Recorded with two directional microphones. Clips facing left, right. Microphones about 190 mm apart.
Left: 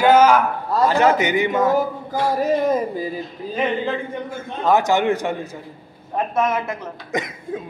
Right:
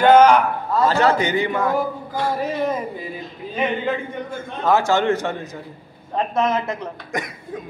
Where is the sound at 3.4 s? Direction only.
35° left (ahead or behind).